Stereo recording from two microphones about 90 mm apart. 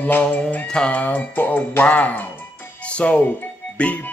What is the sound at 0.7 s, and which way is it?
Speech, 15° left (ahead or behind).